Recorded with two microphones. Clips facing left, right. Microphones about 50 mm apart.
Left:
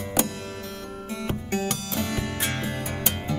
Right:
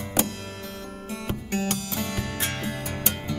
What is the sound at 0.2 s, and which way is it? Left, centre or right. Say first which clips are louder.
Music: even; left.